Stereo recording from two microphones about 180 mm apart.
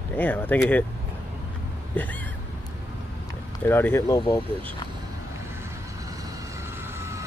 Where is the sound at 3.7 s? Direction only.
15° left (ahead or behind).